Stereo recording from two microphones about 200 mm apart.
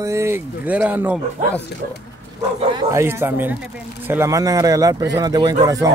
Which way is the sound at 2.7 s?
15° right (ahead or behind).